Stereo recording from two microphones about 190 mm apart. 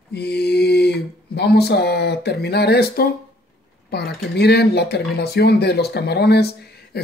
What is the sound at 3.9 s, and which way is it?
Speech, 55° left (ahead or behind).